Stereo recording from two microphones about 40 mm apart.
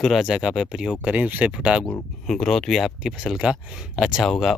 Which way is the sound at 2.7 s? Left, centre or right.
Centre.